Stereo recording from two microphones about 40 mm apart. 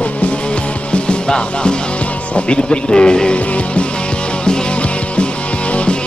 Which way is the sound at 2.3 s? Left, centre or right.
Left.